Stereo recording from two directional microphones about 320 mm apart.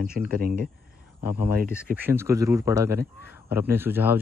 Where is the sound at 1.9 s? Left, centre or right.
Centre.